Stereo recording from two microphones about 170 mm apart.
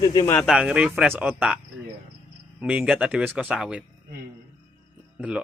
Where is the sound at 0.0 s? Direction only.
30° left (ahead or behind).